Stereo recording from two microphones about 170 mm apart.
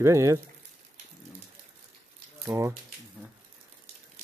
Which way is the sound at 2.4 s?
15° right (ahead or behind).